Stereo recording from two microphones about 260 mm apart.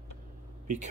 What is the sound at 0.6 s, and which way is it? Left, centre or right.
Speech, right.